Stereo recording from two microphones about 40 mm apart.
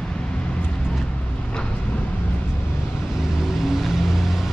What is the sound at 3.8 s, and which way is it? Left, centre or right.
Vehicle, centre.